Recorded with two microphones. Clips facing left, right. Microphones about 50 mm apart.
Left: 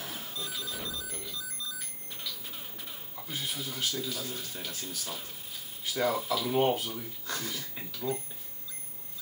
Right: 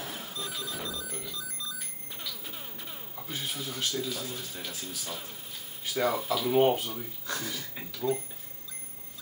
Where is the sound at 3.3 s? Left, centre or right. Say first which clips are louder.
Right 1 dB; centre.